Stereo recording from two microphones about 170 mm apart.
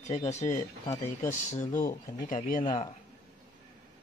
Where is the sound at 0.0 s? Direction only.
40° left (ahead or behind).